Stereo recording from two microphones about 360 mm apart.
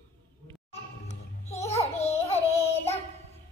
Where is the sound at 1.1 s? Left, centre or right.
Centre.